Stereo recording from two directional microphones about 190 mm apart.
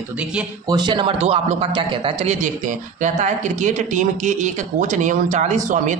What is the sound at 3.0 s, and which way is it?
A man's voice, 40° right (ahead or behind).